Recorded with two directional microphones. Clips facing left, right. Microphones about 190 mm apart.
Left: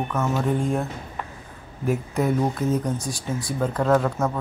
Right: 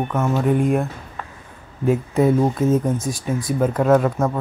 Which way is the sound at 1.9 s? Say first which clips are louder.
Right 6 dB; 25° right (ahead or behind).